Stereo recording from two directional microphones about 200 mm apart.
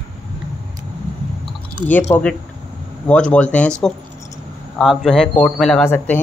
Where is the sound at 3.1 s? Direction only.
5° left (ahead or behind).